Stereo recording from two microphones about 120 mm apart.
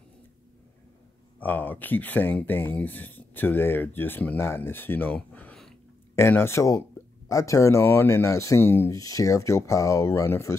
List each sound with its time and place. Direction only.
1.4 s speech: 15° left (ahead or behind)
6.1 s speech: 20° left (ahead or behind)